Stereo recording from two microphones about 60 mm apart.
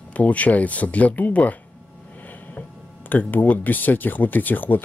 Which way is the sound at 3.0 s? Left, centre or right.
Left.